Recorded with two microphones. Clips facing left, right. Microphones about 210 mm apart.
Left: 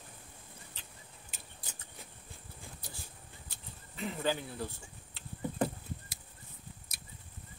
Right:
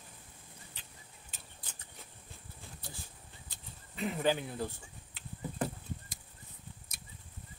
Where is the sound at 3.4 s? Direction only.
20° right (ahead or behind).